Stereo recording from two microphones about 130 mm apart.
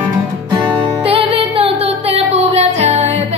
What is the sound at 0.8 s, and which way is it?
Music, 45° right (ahead or behind).